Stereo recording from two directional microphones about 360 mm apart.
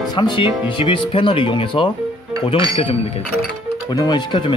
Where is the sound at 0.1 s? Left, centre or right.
Centre.